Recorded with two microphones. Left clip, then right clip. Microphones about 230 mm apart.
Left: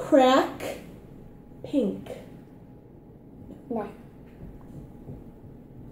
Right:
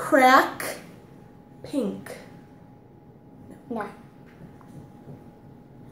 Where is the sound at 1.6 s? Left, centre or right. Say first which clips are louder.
Left 2 dB; right.